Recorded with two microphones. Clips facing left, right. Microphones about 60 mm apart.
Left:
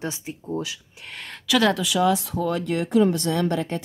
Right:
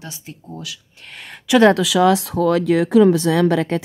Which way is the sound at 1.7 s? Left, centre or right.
Right.